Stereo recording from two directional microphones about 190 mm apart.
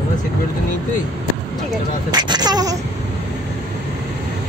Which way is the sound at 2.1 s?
20° right (ahead or behind).